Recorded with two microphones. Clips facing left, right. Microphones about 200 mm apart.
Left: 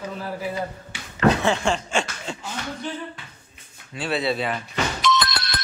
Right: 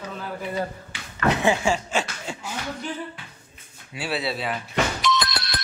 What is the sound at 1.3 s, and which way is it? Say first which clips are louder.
Speech: even; 15° right (ahead or behind).